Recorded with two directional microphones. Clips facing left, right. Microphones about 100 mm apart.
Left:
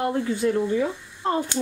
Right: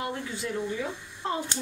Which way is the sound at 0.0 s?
50° left (ahead or behind).